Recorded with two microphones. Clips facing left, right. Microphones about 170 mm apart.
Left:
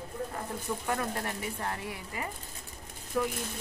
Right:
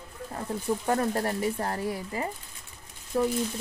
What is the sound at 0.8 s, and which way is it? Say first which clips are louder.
Speech: right 7 dB; 35° right (ahead or behind).